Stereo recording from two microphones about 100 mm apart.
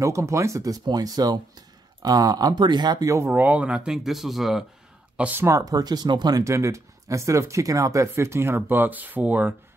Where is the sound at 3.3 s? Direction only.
15° right (ahead or behind).